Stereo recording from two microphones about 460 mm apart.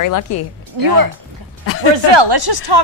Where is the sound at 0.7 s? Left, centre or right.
Right.